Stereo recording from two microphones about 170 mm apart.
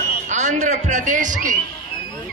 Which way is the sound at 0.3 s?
45° right (ahead or behind).